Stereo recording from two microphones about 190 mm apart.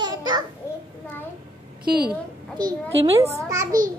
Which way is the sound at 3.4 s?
15° right (ahead or behind).